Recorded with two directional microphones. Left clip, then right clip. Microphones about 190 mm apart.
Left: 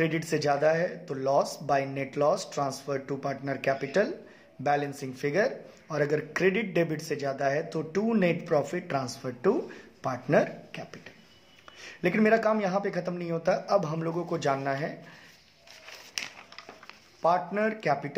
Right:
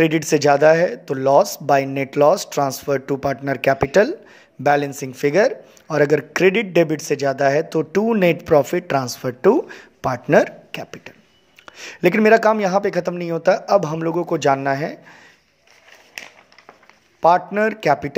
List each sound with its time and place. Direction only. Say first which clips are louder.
0.0 s a man's voice: right 12 dB; 40° right (ahead or behind)
17.2 s a man's voice: right 10 dB; 45° right (ahead or behind)